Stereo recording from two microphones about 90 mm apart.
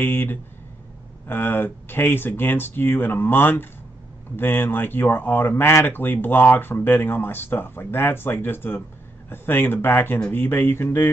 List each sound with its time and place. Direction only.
0.0 s speech: 20° left (ahead or behind)